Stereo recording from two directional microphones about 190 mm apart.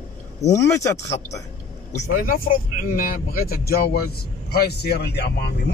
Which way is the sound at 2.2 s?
50° left (ahead or behind).